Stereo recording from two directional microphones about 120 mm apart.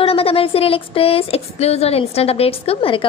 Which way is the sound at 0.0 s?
50° left (ahead or behind).